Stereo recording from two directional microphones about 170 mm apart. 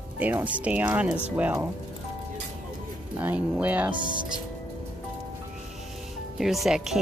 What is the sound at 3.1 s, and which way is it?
Speech, 10° right (ahead or behind).